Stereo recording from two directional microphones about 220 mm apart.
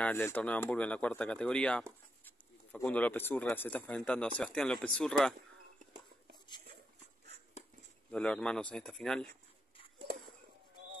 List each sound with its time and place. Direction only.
0.0 s speech: 10° left (ahead or behind)
8.1 s speech: 5° left (ahead or behind)